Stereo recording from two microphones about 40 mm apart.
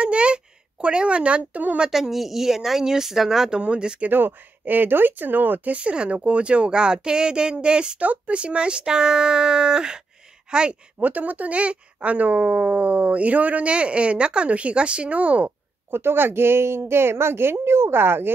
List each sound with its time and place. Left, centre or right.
0.0 s a sound: right
1.9 s a woman's voice: centre
3.5 s speech: right
4.1 s speech: right
5.7 s speech: right
8.0 s speech: right
11.0 s speech: right
15.9 s a woman's voice: right